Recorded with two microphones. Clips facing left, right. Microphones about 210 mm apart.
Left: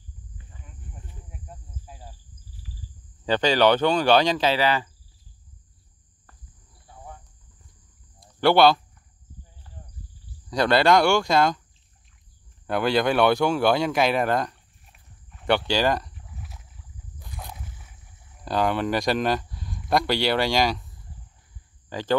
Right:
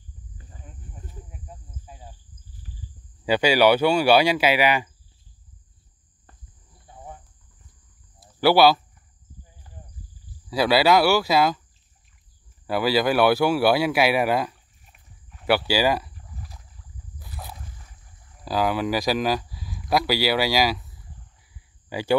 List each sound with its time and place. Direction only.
0.4 s cricket: 40° right (ahead or behind)
1.3 s cricket: centre (ahead or behind)
3.3 s speech: 10° right (ahead or behind)
8.2 s a sound: 5° right (ahead or behind)
10.5 s speech: 5° right (ahead or behind)
12.6 s a sound: 5° right (ahead or behind)
21.8 s speech: 10° right (ahead or behind)